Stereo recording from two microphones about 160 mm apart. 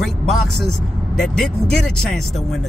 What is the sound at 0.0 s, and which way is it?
Speech, centre (ahead or behind).